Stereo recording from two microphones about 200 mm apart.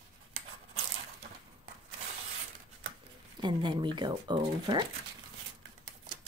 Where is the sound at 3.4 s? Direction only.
20° right (ahead or behind).